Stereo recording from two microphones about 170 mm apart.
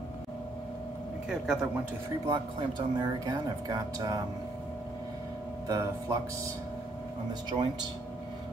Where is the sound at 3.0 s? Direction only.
25° right (ahead or behind).